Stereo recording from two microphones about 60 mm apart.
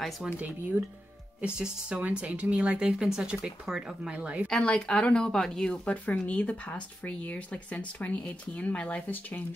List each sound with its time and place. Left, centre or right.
0.4 s speech: right
1.4 s speech: centre
4.1 s speech: right
4.5 s speech: centre
6.0 s speech: left